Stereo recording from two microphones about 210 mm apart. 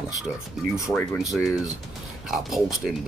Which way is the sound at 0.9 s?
Centre (ahead or behind).